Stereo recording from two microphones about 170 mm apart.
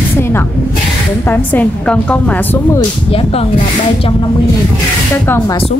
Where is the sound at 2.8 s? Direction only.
35° left (ahead or behind).